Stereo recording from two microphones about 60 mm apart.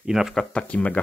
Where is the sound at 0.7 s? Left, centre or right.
Left.